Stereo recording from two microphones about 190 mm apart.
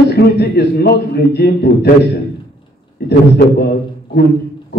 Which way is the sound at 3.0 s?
60° left (ahead or behind).